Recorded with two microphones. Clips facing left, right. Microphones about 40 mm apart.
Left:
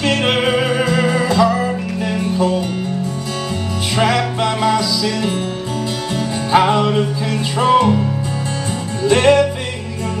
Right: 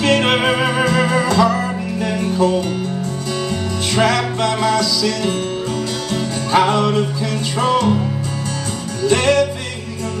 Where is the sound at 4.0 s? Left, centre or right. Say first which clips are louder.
Even; centre.